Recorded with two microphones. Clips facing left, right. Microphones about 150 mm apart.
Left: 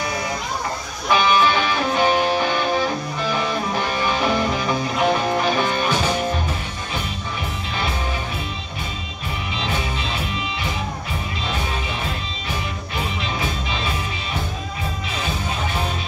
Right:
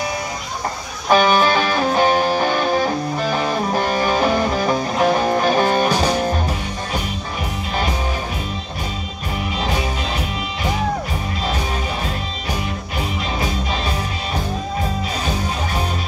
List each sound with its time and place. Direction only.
1.1 s music: 40° right (ahead or behind)